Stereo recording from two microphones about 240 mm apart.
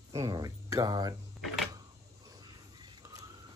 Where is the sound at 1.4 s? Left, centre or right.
Centre.